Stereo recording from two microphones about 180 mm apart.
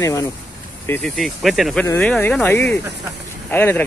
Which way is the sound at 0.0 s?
15° left (ahead or behind).